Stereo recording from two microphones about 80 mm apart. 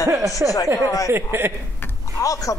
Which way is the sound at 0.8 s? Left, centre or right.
Left.